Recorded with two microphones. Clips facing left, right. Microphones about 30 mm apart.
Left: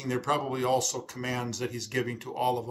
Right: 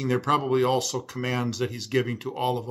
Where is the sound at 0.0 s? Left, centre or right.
Right.